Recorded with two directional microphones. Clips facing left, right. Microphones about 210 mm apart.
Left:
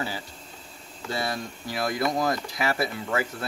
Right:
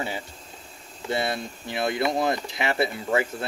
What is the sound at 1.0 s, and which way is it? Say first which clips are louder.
Speech: right 3 dB; 25° right (ahead or behind).